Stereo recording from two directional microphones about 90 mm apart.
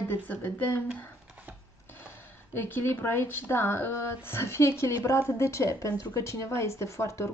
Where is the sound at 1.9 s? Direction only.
25° left (ahead or behind).